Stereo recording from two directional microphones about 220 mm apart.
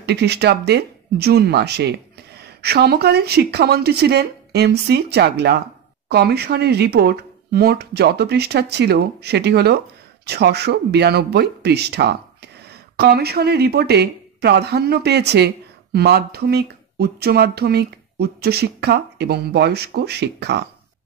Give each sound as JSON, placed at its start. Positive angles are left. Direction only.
{"t": 0.0, "sound": "speech", "side_deg": -50}